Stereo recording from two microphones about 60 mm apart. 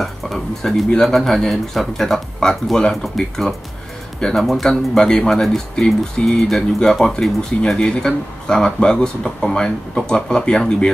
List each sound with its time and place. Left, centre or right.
0.0 s speech: centre